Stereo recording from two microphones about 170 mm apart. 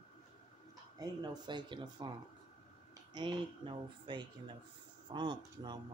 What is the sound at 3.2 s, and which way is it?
Speech, 25° right (ahead or behind).